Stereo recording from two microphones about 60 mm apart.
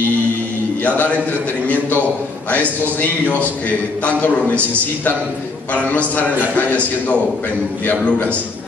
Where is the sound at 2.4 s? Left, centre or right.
Left.